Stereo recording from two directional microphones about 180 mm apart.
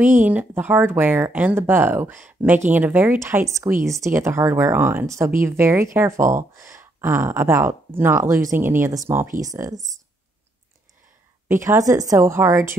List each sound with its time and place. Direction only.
0.2 s speech: 10° right (ahead or behind)
11.4 s speech: 15° right (ahead or behind)